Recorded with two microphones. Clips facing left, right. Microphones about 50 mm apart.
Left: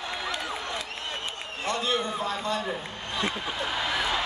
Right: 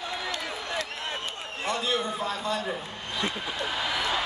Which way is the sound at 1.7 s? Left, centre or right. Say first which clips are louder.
Left 1 dB; centre.